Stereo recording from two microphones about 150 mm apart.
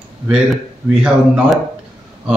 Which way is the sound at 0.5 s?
5° right (ahead or behind).